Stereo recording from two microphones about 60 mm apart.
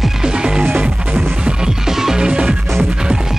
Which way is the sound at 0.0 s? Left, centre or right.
Centre.